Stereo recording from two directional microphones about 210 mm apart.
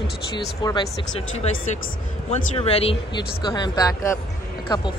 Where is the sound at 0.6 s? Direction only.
15° left (ahead or behind).